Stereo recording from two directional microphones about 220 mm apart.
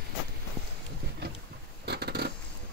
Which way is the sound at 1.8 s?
50° right (ahead or behind).